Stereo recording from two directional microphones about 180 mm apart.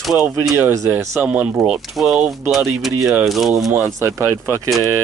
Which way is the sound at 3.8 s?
15° right (ahead or behind).